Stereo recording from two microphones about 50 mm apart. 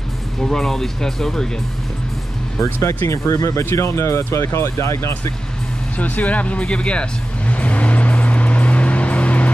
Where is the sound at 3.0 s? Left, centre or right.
Left.